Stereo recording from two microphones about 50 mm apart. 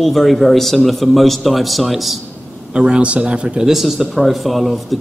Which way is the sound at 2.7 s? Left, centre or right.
Centre.